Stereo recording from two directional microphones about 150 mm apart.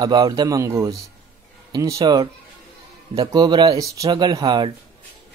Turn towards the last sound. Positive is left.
turn(degrees=-30)  # may be behind; listen again after turning